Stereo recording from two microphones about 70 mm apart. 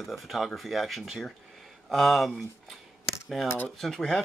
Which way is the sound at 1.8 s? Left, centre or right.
Centre.